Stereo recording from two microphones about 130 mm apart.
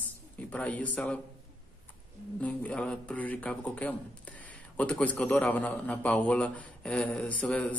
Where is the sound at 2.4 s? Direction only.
10° left (ahead or behind).